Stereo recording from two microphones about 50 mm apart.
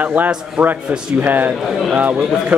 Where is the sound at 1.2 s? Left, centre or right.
Right.